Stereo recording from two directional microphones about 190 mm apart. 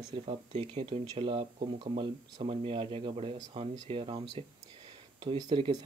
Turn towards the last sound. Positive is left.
turn(degrees=-25)  # may be behind; listen again after turning